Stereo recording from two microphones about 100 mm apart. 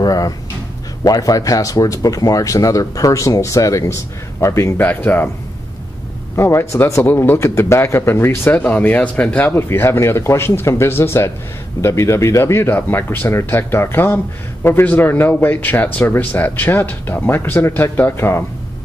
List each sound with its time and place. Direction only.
0.0 s a sound: 40° left (ahead or behind)
1.0 s speech: 40° left (ahead or behind); by 5.3 s 20° left (ahead or behind)
6.3 s speech: 25° left (ahead or behind)